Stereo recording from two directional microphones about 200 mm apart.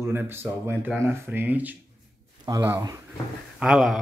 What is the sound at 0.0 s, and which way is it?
Speech, 10° right (ahead or behind).